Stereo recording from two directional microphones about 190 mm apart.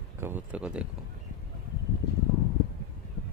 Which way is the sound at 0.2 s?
10° right (ahead or behind).